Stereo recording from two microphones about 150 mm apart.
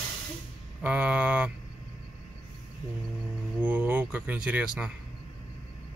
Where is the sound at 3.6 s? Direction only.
10° right (ahead or behind).